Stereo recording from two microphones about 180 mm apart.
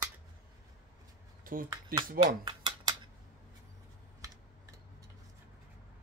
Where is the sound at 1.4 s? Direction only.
50° right (ahead or behind).